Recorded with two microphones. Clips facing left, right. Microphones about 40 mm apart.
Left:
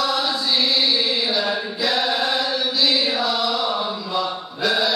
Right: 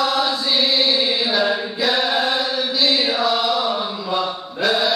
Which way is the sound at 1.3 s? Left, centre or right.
Right.